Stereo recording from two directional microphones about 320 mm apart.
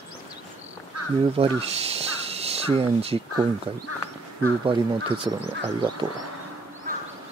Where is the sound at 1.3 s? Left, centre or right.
Centre.